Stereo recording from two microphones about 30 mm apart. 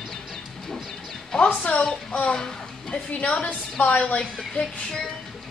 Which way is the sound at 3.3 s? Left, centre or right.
Left.